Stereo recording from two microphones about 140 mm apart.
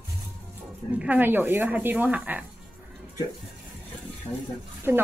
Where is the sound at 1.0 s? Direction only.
10° right (ahead or behind).